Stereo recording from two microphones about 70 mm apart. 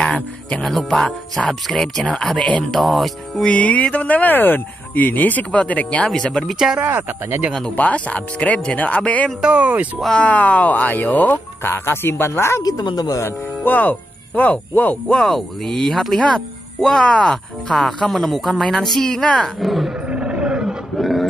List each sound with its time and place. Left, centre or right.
0.0 s speech: centre
0.7 s speech: centre
3.4 s speech: centre
6.8 s speech: right
7.7 s speech: left
9.4 s speech: centre
10.1 s speech: left
11.6 s speech: left
12.6 s speech: left
13.2 s speech: left
15.1 s speech: centre
19.9 s roar: centre
21.0 s a sound: centre